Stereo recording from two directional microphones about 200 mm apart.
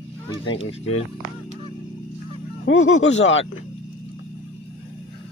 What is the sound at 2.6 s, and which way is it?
Speech, 75° left (ahead or behind).